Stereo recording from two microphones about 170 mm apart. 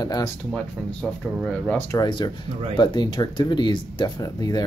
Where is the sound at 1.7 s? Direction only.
25° left (ahead or behind).